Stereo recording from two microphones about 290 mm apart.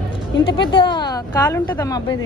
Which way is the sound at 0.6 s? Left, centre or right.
Centre.